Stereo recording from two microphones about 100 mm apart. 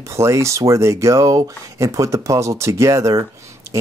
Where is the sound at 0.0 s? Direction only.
30° right (ahead or behind).